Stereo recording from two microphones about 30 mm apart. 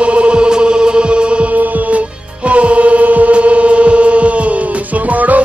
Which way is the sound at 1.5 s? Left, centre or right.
Right.